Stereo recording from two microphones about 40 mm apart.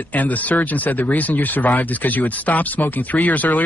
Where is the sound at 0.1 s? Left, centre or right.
Left.